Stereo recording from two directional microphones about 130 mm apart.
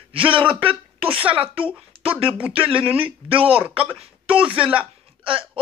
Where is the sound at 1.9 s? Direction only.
45° right (ahead or behind).